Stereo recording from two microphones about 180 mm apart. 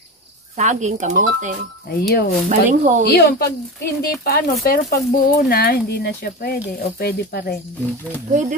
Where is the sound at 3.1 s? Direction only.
65° left (ahead or behind).